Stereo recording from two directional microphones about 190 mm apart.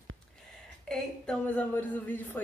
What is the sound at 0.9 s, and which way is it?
A woman's voice, 5° left (ahead or behind).